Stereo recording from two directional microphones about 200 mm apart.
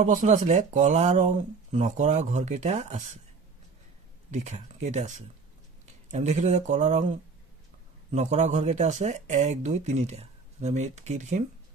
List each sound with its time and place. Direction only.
0.0 s speech: 40° right (ahead or behind)
4.3 s speech: 35° right (ahead or behind)